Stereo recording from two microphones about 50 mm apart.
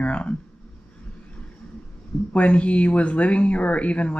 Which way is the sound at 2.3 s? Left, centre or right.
Left.